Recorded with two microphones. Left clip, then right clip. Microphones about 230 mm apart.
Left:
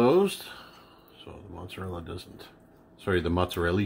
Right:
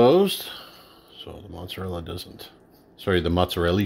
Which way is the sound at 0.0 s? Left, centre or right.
Right.